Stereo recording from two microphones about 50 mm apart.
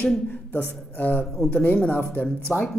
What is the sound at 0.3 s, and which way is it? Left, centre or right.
Speech, left.